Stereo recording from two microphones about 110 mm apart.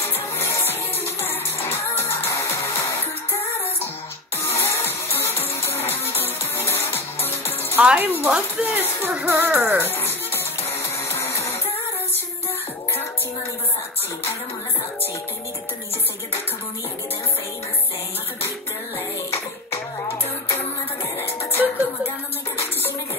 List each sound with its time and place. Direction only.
0.1 s music: 20° left (ahead or behind)
4.6 s music: 20° left (ahead or behind)
7.7 s speech: 15° right (ahead or behind)
9.8 s music: 20° left (ahead or behind)
21.2 s music: 20° left (ahead or behind)